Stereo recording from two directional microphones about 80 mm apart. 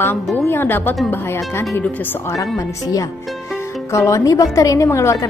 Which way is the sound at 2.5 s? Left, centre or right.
Left.